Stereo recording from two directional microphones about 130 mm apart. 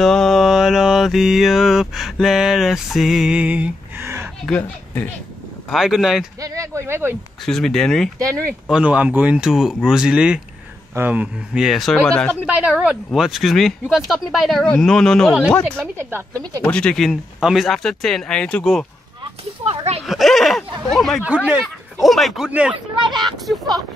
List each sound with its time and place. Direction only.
0.0 s mantra: 5° left (ahead or behind); by 4.3 s 20° right (ahead or behind)
4.5 s speech: 15° left (ahead or behind)
5.7 s speech: centre (ahead or behind)
6.4 s speech: 25° right (ahead or behind)
7.4 s speech: 5° left (ahead or behind)
8.6 s speech: 10° right (ahead or behind); by 12.3 s 10° left (ahead or behind)
12.4 s speech: 10° right (ahead or behind)
16.0 s speech: 20° right (ahead or behind)
16.6 s speech: 10° left (ahead or behind)
19.7 s a sound: 55° right (ahead or behind)
20.1 s speech: centre (ahead or behind)
22.9 s speech: 35° right (ahead or behind)
23.4 s speech: centre (ahead or behind)